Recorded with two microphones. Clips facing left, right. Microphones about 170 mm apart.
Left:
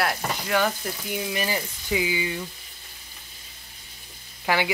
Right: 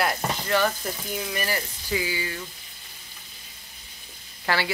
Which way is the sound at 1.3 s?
15° left (ahead or behind).